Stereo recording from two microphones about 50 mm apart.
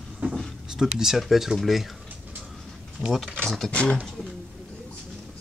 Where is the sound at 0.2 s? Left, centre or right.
Right.